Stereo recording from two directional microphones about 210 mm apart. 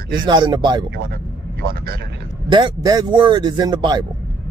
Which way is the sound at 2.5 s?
20° right (ahead or behind).